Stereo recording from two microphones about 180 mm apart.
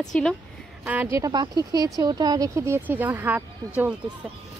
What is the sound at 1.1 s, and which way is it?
Speech, 20° right (ahead or behind).